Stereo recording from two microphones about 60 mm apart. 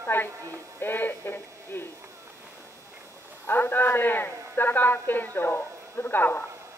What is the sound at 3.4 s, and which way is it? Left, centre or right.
A man's voice, left.